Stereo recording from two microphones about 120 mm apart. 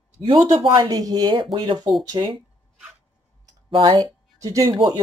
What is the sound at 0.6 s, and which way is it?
Speech, 40° right (ahead or behind).